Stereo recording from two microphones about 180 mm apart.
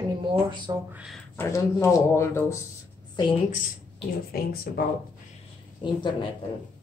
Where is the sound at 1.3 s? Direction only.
15° left (ahead or behind).